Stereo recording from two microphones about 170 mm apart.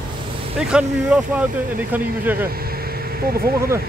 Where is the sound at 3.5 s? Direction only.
15° right (ahead or behind).